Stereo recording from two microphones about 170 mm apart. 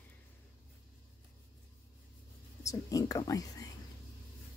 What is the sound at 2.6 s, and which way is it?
Speech, 20° left (ahead or behind).